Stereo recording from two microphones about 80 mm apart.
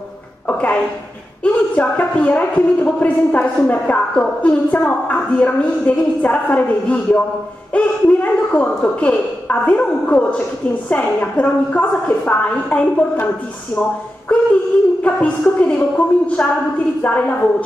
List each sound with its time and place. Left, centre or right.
0.5 s a woman's voice: centre
14.3 s a sound: centre
15.0 s a woman's voice: centre